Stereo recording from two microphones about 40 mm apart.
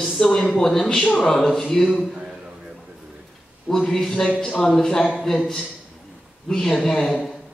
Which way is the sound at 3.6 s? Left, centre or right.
Centre.